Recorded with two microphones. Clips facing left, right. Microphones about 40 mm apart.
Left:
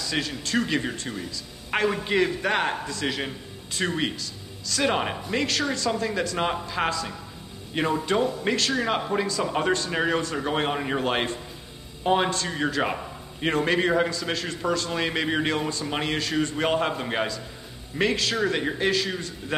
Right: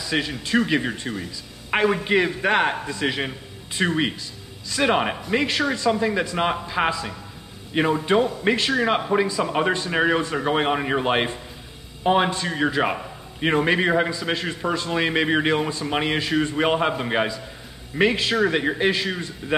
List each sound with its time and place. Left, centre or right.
0.0 s a man's voice: centre